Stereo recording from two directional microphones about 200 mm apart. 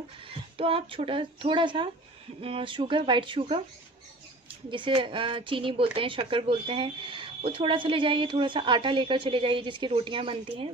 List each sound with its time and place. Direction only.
0.3 s speech: 25° right (ahead or behind)
4.6 s speech: 25° right (ahead or behind)